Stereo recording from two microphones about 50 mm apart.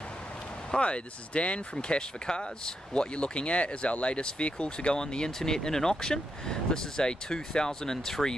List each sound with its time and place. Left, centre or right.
0.7 s speech: left